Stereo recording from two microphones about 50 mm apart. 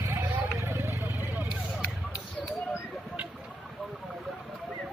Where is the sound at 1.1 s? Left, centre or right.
Right.